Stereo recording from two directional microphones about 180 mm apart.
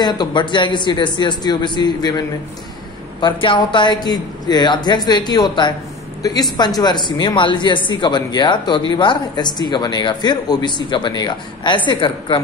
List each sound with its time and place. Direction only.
0.0 s speech: 25° left (ahead or behind)